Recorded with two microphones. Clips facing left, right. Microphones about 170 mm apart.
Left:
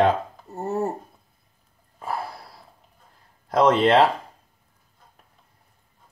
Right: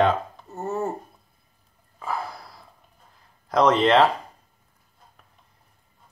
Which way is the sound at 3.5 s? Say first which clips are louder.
Left 1 dB; 30° left (ahead or behind).